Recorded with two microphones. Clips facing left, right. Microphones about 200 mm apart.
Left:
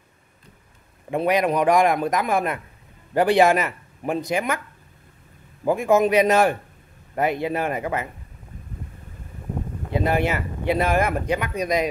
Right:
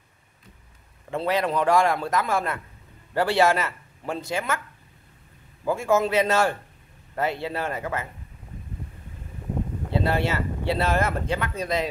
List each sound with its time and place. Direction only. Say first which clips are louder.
1.1 s speech: left 4 dB; 15° left (ahead or behind)
5.7 s speech: left 4 dB; 15° left (ahead or behind)
9.8 s speech: left 3 dB; 15° left (ahead or behind)